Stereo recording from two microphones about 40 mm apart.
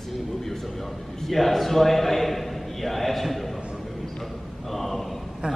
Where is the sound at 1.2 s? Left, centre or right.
Centre.